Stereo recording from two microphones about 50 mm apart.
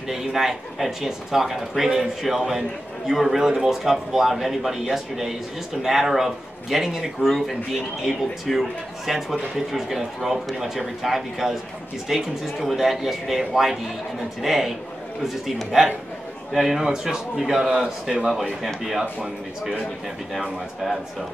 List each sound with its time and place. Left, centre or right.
0.1 s a man's voice: centre
20.8 s a man's voice: centre